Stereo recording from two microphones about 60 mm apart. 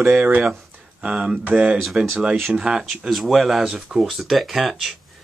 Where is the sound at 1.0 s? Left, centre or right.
Centre.